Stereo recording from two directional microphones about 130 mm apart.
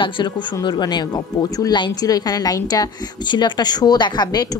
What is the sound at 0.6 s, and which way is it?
Speech, 35° left (ahead or behind).